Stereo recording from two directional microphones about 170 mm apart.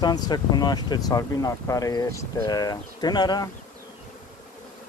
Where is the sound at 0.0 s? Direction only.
25° left (ahead or behind).